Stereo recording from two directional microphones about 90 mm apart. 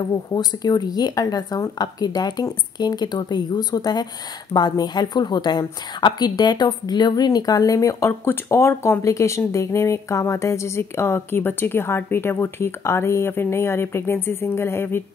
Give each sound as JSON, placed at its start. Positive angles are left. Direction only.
{"t": 0.0, "sound": "a woman's voice", "side_deg": 45}